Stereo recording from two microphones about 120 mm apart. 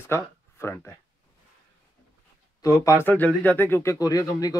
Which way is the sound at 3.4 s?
15° left (ahead or behind).